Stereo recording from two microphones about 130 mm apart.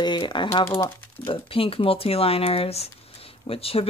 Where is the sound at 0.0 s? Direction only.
35° left (ahead or behind).